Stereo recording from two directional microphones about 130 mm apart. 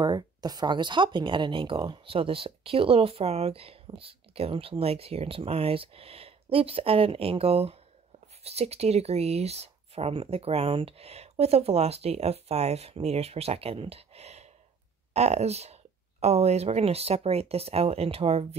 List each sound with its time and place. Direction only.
0.0 s speech: 30° right (ahead or behind); by 18.6 s 50° right (ahead or behind)